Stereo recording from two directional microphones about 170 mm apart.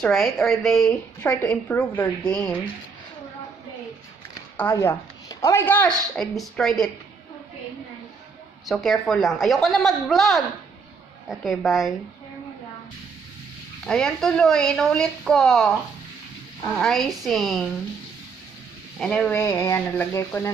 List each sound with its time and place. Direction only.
0.0 s a woman's voice: centre (ahead or behind)
4.6 s a woman's voice: 15° left (ahead or behind)
8.6 s speech: centre (ahead or behind)
13.8 s speech: 5° left (ahead or behind)
18.9 s speech: 5° left (ahead or behind)
19.3 s a woman's voice: 15° left (ahead or behind)